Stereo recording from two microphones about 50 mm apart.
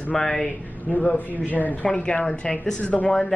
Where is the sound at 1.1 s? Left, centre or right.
Left.